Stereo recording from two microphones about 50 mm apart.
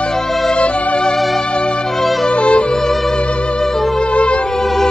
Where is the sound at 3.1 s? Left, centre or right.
Left.